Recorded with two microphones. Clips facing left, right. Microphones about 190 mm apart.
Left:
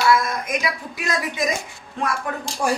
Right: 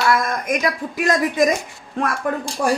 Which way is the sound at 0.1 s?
45° right (ahead or behind).